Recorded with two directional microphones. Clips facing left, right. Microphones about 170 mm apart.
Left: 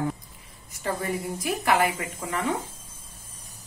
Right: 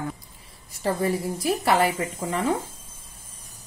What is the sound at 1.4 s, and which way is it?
A woman's voice, 30° right (ahead or behind).